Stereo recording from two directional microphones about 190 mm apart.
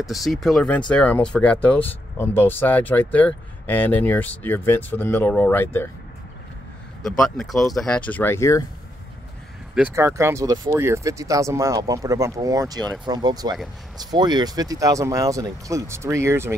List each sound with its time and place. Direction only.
0.1 s speech: centre (ahead or behind)
7.0 s speech: centre (ahead or behind)
9.8 s speech: 10° right (ahead or behind)